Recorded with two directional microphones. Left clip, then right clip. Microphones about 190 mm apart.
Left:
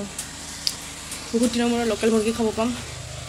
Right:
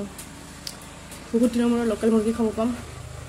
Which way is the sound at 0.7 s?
20° right (ahead or behind).